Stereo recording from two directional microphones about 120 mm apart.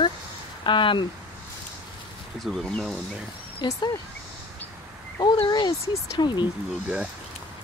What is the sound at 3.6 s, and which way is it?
Speech, 35° left (ahead or behind).